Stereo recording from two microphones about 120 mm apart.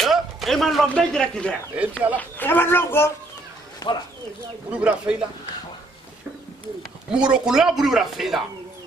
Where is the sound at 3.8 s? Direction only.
30° left (ahead or behind).